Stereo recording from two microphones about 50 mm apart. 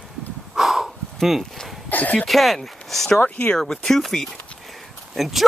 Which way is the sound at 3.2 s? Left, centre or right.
Left.